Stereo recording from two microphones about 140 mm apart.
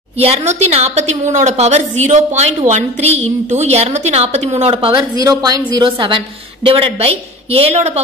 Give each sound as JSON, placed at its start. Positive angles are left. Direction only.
{"t": 0.2, "sound": "a woman's voice", "side_deg": -50}
{"t": 5.2, "sound": "a woman's voice", "side_deg": -25}